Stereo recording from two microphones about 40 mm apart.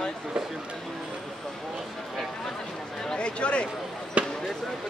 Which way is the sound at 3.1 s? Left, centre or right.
Left.